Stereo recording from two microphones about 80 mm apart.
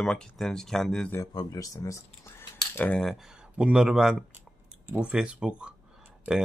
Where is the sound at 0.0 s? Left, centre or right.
Centre.